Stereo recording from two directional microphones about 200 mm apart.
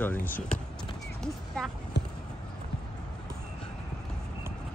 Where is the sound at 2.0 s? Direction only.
60° left (ahead or behind).